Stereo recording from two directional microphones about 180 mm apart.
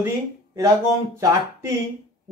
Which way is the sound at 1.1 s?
15° right (ahead or behind).